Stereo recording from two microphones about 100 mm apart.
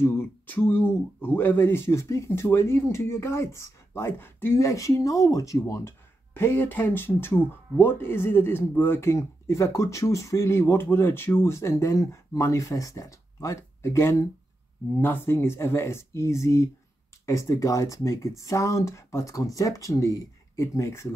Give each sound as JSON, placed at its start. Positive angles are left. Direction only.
{"t": 0.0, "sound": "speech", "side_deg": 25}